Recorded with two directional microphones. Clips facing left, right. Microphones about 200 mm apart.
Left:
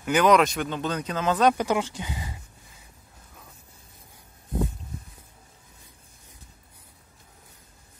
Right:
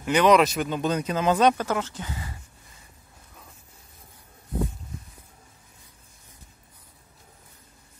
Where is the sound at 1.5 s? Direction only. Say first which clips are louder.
Left 2 dB; 15° left (ahead or behind).